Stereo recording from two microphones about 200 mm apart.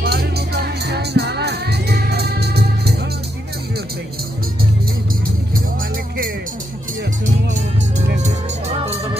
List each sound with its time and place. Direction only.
0.0 s music: 55° right (ahead or behind)
5.8 s music: 45° right (ahead or behind)